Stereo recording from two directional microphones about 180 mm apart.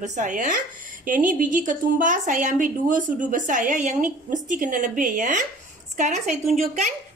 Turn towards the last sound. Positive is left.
turn(degrees=-40)  # may be behind; listen again after turning